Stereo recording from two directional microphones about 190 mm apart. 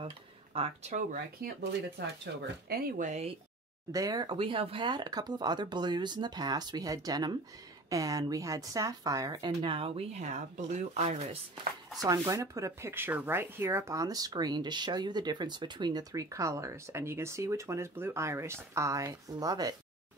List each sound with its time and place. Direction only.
0.0 s speech: 30° right (ahead or behind)
1.1 s speech: 60° right (ahead or behind)
3.1 s speech: 35° right (ahead or behind)
3.9 s speech: 20° right (ahead or behind); by 11.3 s 35° right (ahead or behind)
12.0 s speech: 20° right (ahead or behind)